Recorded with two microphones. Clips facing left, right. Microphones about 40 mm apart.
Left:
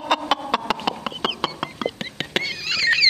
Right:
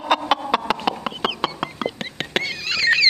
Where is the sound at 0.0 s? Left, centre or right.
Centre.